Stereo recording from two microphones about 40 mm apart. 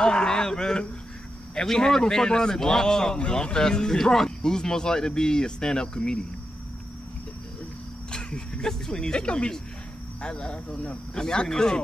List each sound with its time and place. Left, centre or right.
0.0 s a sound: centre
1.5 s speech: centre
8.1 s speech: left